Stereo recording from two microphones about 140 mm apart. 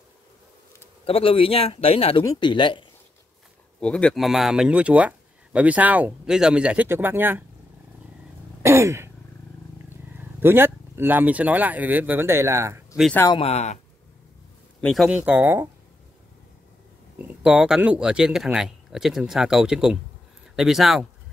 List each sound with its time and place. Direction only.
1.0 s speech: 40° left (ahead or behind)
3.8 s a man's voice: 10° left (ahead or behind); by 7.4 s 15° right (ahead or behind)
8.6 s throat clearing: 20° right (ahead or behind)
10.1 s speech: 15° right (ahead or behind)
13.4 s speech: 50° left (ahead or behind)
14.8 s speech: 5° left (ahead or behind)
15.0 s a man's voice: 10° right (ahead or behind)
17.3 s speech: 5° right (ahead or behind)